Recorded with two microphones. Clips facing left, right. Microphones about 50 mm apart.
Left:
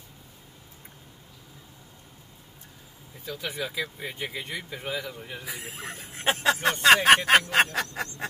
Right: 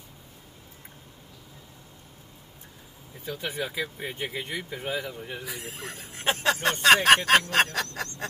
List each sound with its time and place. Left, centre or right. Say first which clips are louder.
3.3 s speech: right 1 dB; right; by 5.4 s centre
5.4 s speech: even; centre